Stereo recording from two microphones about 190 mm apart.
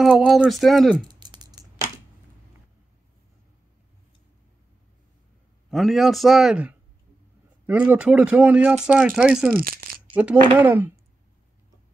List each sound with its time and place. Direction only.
0.0 s a man's voice: centre (ahead or behind)
1.0 s a sound: 20° right (ahead or behind)
5.7 s a man's voice: centre (ahead or behind)
9.5 s speech: 50° right (ahead or behind)
10.1 s speech: 5° right (ahead or behind)